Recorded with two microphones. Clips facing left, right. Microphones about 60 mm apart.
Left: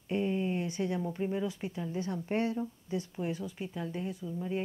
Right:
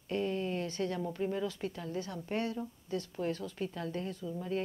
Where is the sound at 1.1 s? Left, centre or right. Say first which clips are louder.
Left 1 dB; centre.